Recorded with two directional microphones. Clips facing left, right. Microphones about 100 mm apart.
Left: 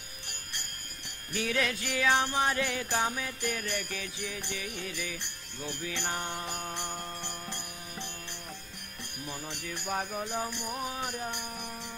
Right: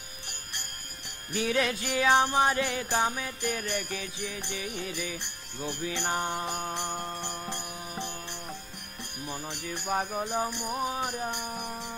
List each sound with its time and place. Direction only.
1.3 s music: 20° right (ahead or behind)
9.2 s music: 15° right (ahead or behind)